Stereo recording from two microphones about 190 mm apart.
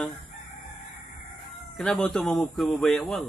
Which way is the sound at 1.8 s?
5° left (ahead or behind).